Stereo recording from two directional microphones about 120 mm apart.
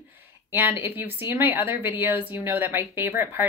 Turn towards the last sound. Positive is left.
turn(degrees=-20)  # may be behind; listen again after turning